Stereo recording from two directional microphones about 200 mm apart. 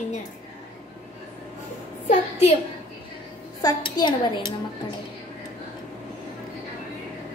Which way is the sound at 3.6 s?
20° left (ahead or behind).